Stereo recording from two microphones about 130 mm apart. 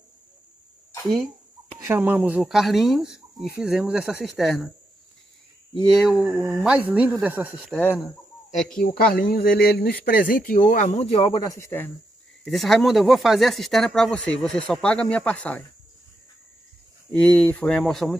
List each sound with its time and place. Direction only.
1.9 s speech: 15° right (ahead or behind)
5.9 s speech: centre (ahead or behind); by 7.7 s 15° right (ahead or behind)
7.7 s speech: 15° left (ahead or behind)
8.7 s speech: 90° left; by 11.1 s 75° left (ahead or behind)
11.1 s speech: 40° left (ahead or behind)
11.5 s speech: 20° left (ahead or behind)
12.4 s speech: centre (ahead or behind)
17.1 s speech: 10° left (ahead or behind)